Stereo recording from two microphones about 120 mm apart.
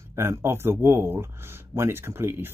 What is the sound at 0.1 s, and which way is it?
Speech, 20° right (ahead or behind).